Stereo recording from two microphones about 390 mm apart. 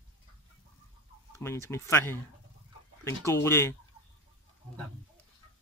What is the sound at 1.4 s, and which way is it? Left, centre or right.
Speech, centre.